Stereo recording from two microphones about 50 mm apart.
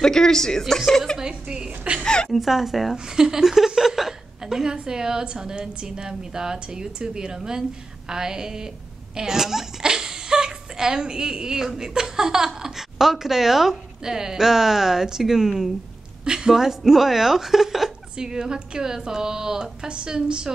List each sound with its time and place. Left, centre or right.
0.0 s a woman's voice: centre
1.1 s a woman's voice: centre
2.0 s a woman's voice: centre
2.3 s a woman's voice: centre